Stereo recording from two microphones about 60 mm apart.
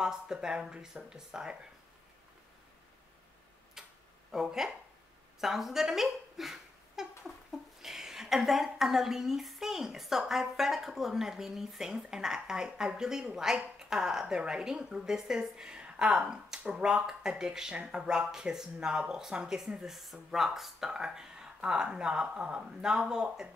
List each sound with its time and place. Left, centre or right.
0.0 s a woman's voice: centre
3.8 s tick-tock: centre
4.3 s a woman's voice: centre